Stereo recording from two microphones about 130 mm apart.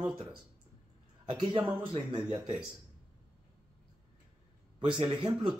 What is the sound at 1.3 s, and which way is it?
Speech, 35° right (ahead or behind).